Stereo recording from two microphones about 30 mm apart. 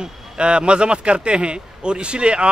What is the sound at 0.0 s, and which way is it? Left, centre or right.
Speech, right.